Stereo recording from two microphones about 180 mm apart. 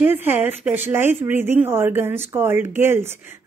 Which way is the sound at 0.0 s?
10° right (ahead or behind).